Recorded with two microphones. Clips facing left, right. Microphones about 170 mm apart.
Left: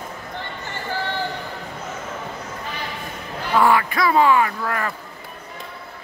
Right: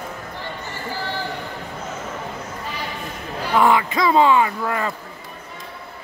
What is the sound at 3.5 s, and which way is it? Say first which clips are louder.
Speech: even; 20° right (ahead or behind).